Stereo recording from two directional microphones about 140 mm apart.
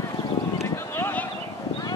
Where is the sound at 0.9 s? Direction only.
15° left (ahead or behind).